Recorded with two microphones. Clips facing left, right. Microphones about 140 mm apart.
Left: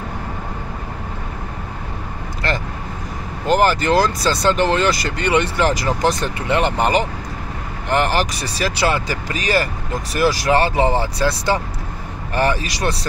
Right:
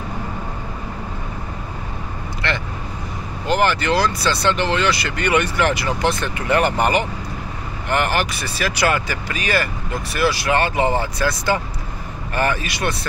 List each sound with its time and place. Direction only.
2.4 s speech: 40° left (ahead or behind)
5.1 s speech: 25° left (ahead or behind)
6.4 s speech: 25° left (ahead or behind)
7.9 s speech: 35° left (ahead or behind)